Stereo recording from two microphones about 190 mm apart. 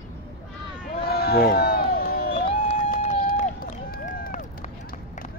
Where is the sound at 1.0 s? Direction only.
55° left (ahead or behind).